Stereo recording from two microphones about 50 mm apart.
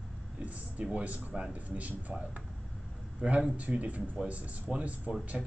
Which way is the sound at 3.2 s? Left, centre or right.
Centre.